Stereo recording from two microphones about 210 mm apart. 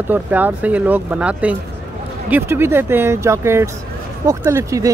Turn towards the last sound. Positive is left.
turn(degrees=-15)  # may be behind; listen again after turning